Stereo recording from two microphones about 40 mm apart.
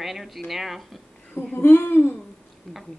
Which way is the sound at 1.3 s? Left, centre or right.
Left.